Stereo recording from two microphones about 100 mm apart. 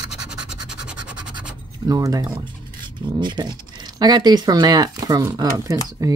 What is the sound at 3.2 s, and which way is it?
Speech, 50° right (ahead or behind).